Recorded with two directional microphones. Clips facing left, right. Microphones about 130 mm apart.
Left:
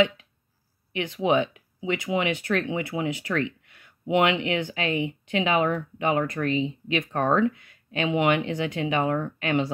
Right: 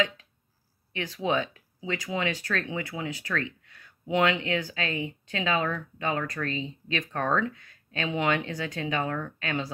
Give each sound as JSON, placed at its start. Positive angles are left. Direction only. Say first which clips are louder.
{"t": 0.9, "sound": "speech", "louder": "left 5 dB", "side_deg": 15}